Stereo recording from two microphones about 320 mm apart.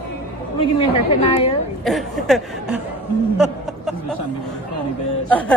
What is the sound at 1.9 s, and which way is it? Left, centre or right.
Speech, centre.